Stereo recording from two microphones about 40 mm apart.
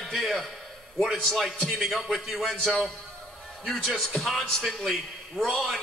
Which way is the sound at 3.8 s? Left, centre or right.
Centre.